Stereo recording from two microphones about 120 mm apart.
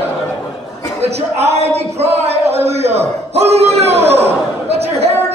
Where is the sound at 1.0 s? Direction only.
60° right (ahead or behind).